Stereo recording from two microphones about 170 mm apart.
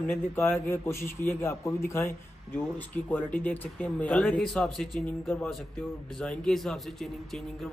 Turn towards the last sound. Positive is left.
turn(degrees=0)  # may be behind; listen again after turning